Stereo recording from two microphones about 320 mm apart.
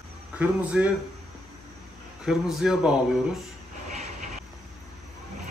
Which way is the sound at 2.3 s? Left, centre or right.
Centre.